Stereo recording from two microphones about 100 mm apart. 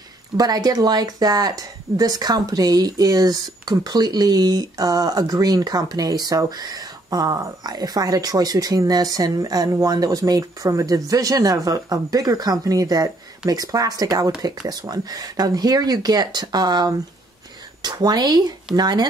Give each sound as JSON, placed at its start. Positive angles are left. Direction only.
{"t": 0.4, "sound": "speech", "side_deg": -40}